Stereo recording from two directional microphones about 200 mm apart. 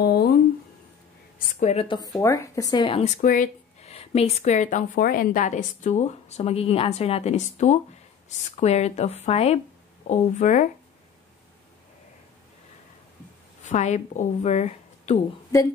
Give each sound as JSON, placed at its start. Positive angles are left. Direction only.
{"t": 0.0, "sound": "a sound", "side_deg": 50}
{"t": 1.6, "sound": "speech", "side_deg": 30}
{"t": 3.2, "sound": "a woman's voice", "side_deg": 40}
{"t": 13.7, "sound": "a woman's voice", "side_deg": 35}